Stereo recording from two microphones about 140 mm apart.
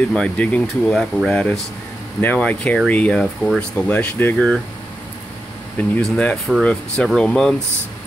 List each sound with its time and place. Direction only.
0.1 s speech: 10° left (ahead or behind)
5.8 s speech: 10° left (ahead or behind)